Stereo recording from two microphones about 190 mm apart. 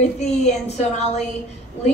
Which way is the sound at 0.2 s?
35° left (ahead or behind).